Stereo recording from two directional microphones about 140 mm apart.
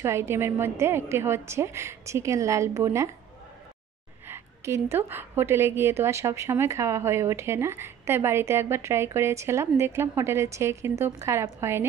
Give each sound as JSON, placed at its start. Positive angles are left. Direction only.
{"t": 0.0, "sound": "a woman's voice", "side_deg": -20}
{"t": 4.3, "sound": "a woman's voice", "side_deg": -20}